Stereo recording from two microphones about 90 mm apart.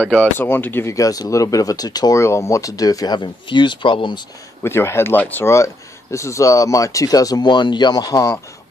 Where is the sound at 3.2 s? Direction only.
60° left (ahead or behind).